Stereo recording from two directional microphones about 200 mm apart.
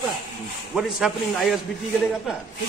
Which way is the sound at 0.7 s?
Centre (ahead or behind).